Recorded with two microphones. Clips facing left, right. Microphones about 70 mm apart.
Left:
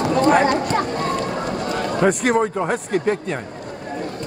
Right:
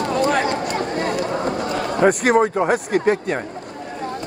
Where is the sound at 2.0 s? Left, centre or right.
Centre.